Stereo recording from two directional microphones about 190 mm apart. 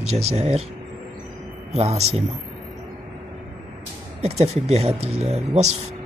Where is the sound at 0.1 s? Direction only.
35° right (ahead or behind).